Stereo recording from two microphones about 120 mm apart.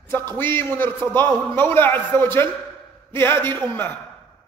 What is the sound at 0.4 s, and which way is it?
A man's voice, 20° left (ahead or behind).